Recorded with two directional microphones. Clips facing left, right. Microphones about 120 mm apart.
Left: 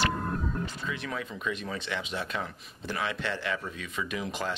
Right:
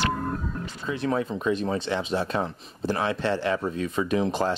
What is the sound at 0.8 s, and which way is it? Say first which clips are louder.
Speech: right 9 dB; 35° right (ahead or behind).